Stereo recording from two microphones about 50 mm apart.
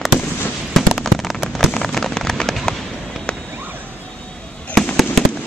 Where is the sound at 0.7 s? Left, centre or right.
Centre.